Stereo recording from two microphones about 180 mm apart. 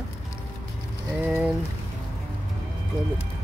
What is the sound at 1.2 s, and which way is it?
Speech, 10° right (ahead or behind).